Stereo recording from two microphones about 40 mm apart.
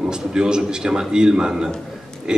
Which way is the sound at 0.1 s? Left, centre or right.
Centre.